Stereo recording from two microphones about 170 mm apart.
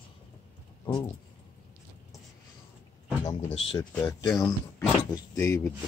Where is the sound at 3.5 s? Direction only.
35° left (ahead or behind).